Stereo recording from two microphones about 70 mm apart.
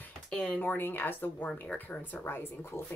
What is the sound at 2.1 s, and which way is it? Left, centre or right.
Speech, left.